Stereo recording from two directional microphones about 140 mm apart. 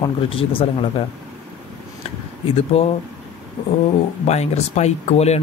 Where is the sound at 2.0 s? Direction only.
45° left (ahead or behind).